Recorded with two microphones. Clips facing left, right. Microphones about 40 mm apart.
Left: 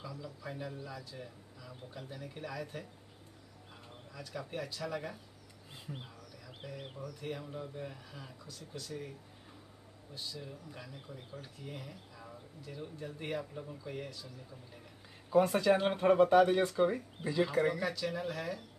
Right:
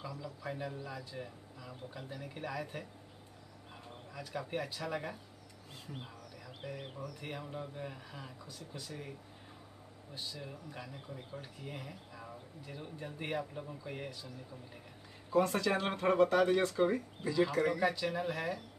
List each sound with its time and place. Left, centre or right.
0.0 s a man's voice: centre
4.1 s speech: centre
6.4 s speech: centre
10.1 s speech: centre
15.2 s speech: centre
17.8 s speech: centre